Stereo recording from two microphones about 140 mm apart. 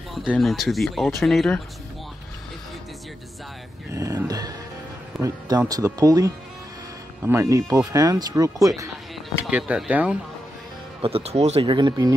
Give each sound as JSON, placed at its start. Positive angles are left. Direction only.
{"t": 0.3, "sound": "speech", "side_deg": 0}
{"t": 3.9, "sound": "music", "side_deg": -25}
{"t": 5.1, "sound": "music", "side_deg": 0}
{"t": 5.7, "sound": "speech", "side_deg": -25}
{"t": 9.5, "sound": "speech", "side_deg": -10}
{"t": 11.0, "sound": "speech", "side_deg": -45}